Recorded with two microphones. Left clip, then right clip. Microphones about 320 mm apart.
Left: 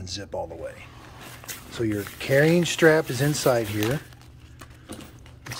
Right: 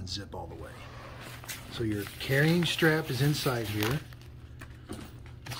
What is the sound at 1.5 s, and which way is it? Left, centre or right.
Speech, centre.